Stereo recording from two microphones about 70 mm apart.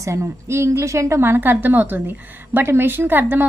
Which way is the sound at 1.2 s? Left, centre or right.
Right.